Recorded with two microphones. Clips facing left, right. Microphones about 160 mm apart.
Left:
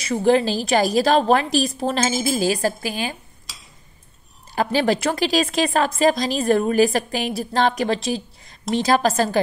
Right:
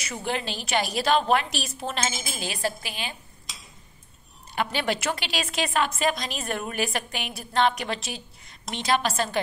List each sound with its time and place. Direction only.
0.0 s a woman's voice: 35° left (ahead or behind)
4.6 s a woman's voice: 35° left (ahead or behind)